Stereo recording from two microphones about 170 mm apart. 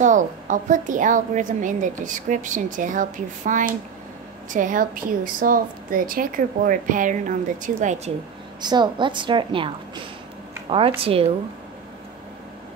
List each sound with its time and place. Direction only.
0.0 s a woman's voice: 50° right (ahead or behind)
8.5 s a woman's voice: 25° right (ahead or behind)
10.7 s speech: 35° right (ahead or behind)